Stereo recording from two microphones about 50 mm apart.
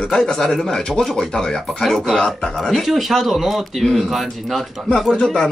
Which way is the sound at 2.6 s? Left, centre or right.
Centre.